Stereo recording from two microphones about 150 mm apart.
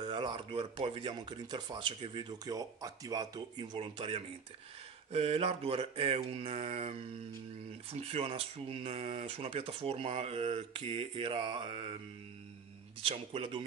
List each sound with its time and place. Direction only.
0.0 s speech: 30° right (ahead or behind)
13.0 s speech: 40° right (ahead or behind)